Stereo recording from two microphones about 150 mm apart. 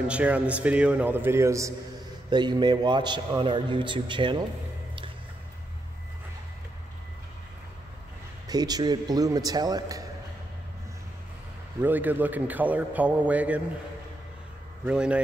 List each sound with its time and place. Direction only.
0.1 s a man's voice: 10° right (ahead or behind)
2.2 s a man's voice: 30° right (ahead or behind)
8.5 s a man's voice: 25° right (ahead or behind)
11.8 s a man's voice: 10° right (ahead or behind)
14.9 s a man's voice: 5° right (ahead or behind)